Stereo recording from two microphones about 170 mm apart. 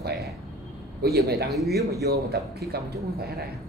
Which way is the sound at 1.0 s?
70° right (ahead or behind).